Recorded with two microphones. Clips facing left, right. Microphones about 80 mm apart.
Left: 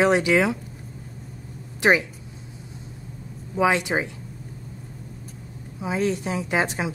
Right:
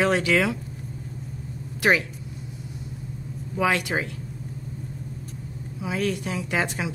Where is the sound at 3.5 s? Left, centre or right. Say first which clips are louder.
Left 3 dB; left.